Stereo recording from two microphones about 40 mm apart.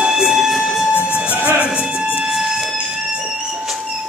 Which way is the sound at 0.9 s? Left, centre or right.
Right.